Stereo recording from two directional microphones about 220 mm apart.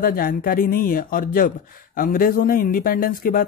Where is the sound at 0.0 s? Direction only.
40° left (ahead or behind).